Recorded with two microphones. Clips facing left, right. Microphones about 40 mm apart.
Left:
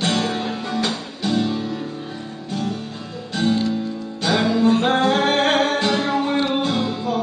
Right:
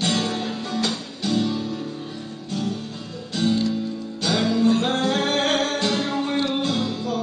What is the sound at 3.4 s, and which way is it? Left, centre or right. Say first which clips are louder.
Music: left 2 dB; centre.